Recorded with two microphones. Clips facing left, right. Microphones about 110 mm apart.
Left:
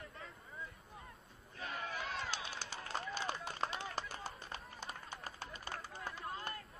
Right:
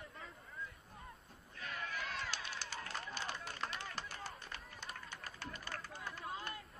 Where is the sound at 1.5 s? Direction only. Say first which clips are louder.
Left 2 dB; 30° left (ahead or behind).